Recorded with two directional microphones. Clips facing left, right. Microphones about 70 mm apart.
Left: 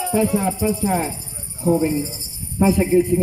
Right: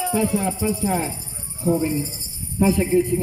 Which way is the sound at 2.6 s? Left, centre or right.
Left.